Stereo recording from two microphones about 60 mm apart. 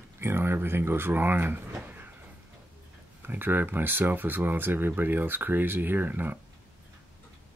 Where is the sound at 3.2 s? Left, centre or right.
Right.